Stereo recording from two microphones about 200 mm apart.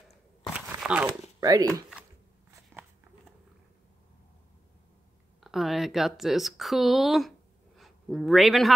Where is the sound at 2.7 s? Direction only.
10° right (ahead or behind).